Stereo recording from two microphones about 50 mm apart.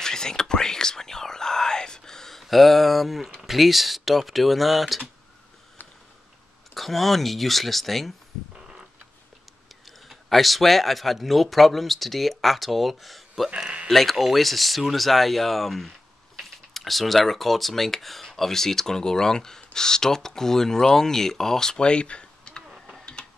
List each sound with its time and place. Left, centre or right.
0.0 s whispering: centre
2.4 s speech: centre
6.7 s speech: centre
9.8 s speech: centre